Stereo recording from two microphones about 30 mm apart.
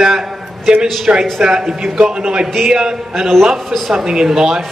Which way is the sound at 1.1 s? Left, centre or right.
Right.